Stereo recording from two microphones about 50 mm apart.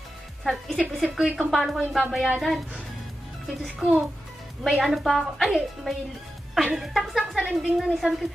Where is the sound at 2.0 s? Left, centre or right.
Centre.